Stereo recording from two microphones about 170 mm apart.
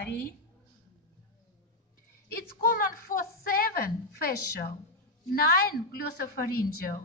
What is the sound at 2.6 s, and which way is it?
Child singing, 60° left (ahead or behind).